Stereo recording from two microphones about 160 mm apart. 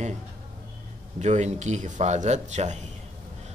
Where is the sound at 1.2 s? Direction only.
45° right (ahead or behind).